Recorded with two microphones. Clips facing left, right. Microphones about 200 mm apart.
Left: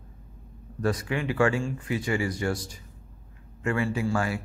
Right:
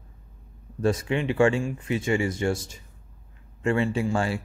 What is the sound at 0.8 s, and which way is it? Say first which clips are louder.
Speech: right 3 dB; 25° right (ahead or behind).